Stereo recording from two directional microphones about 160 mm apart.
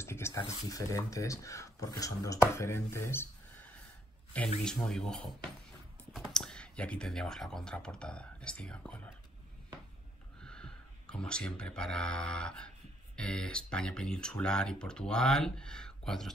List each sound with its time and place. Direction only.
0.0 s a sound: 15° left (ahead or behind)
0.4 s speech: 20° left (ahead or behind)
4.3 s speech: 10° left (ahead or behind)
10.4 s speech: 5° left (ahead or behind)